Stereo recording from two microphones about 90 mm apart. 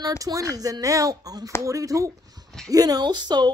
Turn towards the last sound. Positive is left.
turn(degrees=-50)  # may be behind; listen again after turning